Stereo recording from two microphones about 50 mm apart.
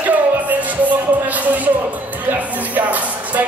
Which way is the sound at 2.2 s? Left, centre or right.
Right.